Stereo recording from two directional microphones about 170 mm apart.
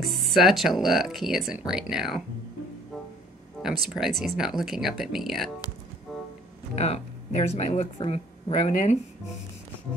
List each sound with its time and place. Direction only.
0.0 s speech: centre (ahead or behind)
3.6 s a sound: centre (ahead or behind)
4.2 s speech: centre (ahead or behind)
6.1 s music: centre (ahead or behind)
6.7 s speech: 40° left (ahead or behind)